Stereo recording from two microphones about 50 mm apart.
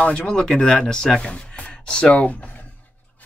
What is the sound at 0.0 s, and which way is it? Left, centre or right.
Speech, left.